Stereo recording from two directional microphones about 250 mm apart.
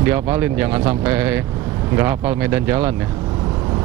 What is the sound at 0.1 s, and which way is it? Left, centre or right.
Speech, centre.